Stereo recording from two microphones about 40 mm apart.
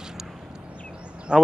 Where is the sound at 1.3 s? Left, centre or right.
Right.